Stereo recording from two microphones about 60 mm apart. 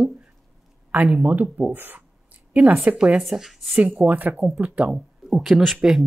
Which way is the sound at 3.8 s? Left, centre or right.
Right.